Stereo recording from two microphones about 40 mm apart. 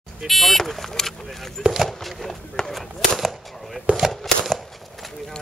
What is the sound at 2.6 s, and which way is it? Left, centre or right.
Speech, centre.